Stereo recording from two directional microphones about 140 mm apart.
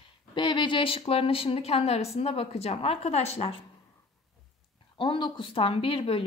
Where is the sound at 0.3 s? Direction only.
35° left (ahead or behind).